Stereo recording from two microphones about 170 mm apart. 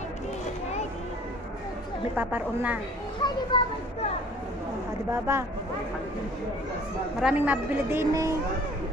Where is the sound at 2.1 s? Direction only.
10° right (ahead or behind).